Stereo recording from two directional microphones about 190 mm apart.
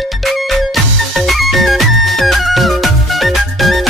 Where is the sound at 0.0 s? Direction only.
Centre (ahead or behind).